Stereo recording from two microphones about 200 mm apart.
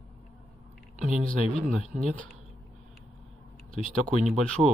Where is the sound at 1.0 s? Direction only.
40° right (ahead or behind).